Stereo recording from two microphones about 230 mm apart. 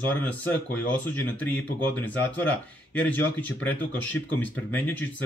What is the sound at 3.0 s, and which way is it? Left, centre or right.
Speech, centre.